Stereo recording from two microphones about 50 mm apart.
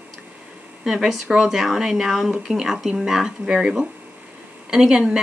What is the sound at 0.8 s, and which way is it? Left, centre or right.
Speech, centre.